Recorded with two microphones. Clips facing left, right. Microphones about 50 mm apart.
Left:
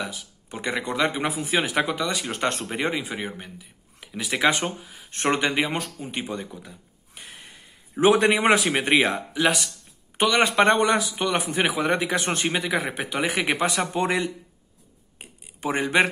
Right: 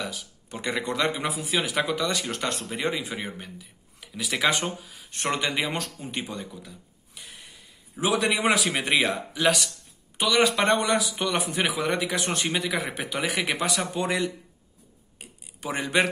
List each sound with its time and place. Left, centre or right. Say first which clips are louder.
0.5 s speech: left 1 dB; left
1.2 s speech: left 3 dB; left
2.0 s speech: even; centre
2.3 s speech: left 4 dB; left
2.9 s speech: left 2 dB; centre
5.1 s speech: left 4 dB; left
6.7 s a sound: left 1 dB; left
8.6 s speech: left 3 dB; left
9.1 s speech: left 1 dB; centre
10.1 s speech: left 3 dB; left
15.1 s a sound: left 2 dB; left